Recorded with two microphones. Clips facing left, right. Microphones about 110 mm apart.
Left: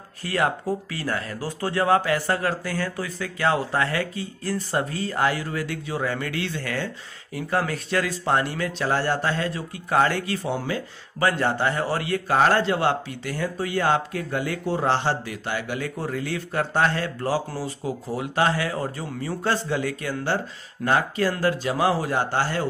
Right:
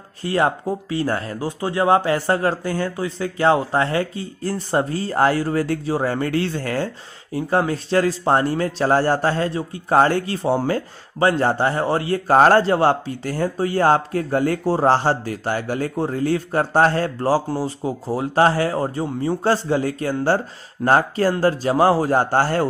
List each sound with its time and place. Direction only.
0.2 s speech: 25° right (ahead or behind); by 22.7 s 45° right (ahead or behind)